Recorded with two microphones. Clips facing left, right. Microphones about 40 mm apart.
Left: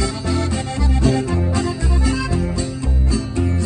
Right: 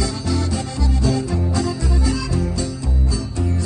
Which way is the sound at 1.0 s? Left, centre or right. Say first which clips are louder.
Left 3 dB; left.